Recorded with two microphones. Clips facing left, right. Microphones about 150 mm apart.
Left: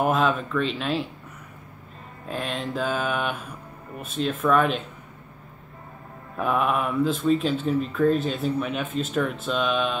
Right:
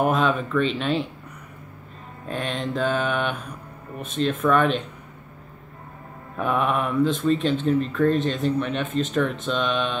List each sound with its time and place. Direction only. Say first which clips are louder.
0.0 s speech: right 1 dB; centre (ahead or behind)
2.2 s speech: right 2 dB; centre (ahead or behind)
6.3 s speech: right 1 dB; centre (ahead or behind)